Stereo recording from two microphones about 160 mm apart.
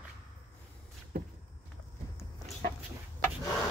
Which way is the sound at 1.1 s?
65° right (ahead or behind).